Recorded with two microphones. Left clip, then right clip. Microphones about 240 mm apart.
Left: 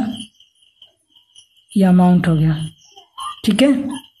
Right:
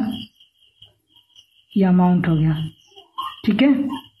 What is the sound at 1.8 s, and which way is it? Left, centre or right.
Speech, left.